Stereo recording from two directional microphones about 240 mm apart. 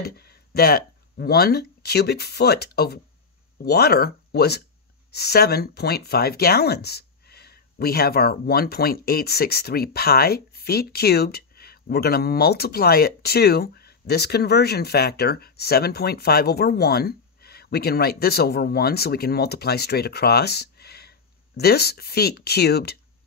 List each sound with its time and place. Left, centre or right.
0.0 s speech: left